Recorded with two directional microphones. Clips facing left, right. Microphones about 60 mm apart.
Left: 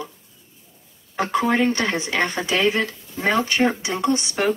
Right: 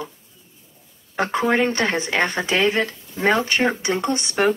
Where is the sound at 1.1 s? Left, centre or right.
Right.